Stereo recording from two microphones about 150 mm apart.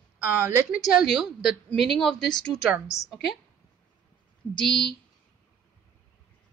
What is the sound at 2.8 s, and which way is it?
Speech, 20° left (ahead or behind).